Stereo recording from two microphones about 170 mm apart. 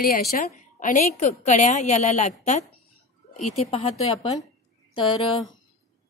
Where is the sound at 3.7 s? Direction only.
35° left (ahead or behind).